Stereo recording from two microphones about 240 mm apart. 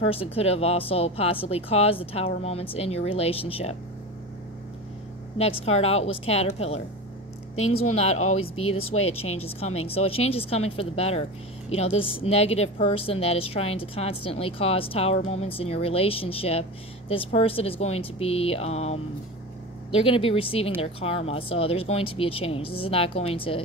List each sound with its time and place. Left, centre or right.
0.1 s a woman's voice: left
5.4 s a woman's voice: left
7.5 s speech: left
7.9 s a woman's voice: left
8.4 s speech: left
8.9 s a woman's voice: left